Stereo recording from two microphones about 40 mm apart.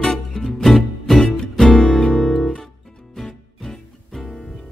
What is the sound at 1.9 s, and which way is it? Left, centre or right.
Music, left.